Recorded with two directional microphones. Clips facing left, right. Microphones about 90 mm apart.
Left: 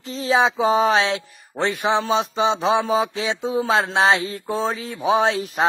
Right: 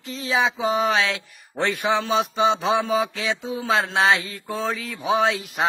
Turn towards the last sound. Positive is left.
turn(degrees=35)  # may be behind; listen again after turning